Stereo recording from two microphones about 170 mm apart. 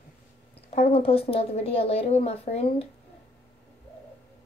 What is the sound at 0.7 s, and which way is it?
A woman's voice, 35° left (ahead or behind).